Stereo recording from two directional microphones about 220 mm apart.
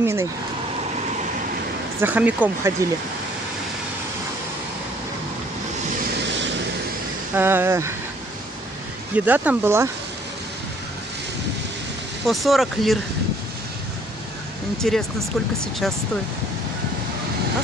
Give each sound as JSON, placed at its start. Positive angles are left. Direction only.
{"t": 0.0, "sound": "speech", "side_deg": -10}
{"t": 2.0, "sound": "speech", "side_deg": -5}
{"t": 6.1, "sound": "vehicle", "side_deg": -55}
{"t": 7.3, "sound": "speech", "side_deg": -10}
{"t": 9.1, "sound": "speech", "side_deg": -5}
{"t": 12.3, "sound": "speech", "side_deg": 0}
{"t": 14.8, "sound": "speech", "side_deg": 0}